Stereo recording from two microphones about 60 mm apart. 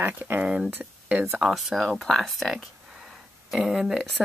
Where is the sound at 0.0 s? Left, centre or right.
Right.